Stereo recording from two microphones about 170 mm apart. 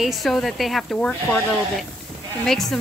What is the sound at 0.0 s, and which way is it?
A woman's voice, centre (ahead or behind).